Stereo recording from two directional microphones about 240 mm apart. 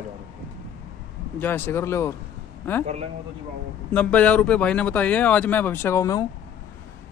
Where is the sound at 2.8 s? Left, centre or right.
Right.